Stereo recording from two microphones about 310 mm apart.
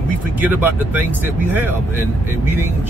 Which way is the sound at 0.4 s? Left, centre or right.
Centre.